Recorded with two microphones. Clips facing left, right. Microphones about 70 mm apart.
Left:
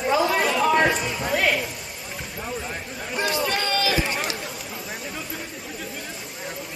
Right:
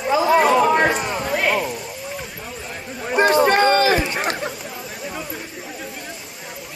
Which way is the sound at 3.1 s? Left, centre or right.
Right.